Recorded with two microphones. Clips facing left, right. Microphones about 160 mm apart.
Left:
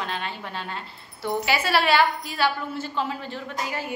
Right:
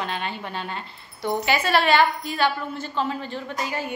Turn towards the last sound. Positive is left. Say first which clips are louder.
# right 2 dB
turn(degrees=0)  # may be behind; listen again after turning